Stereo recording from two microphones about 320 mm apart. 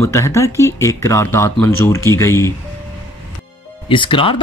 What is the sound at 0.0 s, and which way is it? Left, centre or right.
Speech, centre.